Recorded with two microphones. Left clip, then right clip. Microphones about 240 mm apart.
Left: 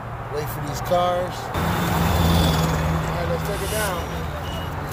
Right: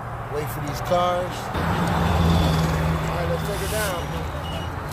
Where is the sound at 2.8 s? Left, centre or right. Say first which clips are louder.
Even; centre.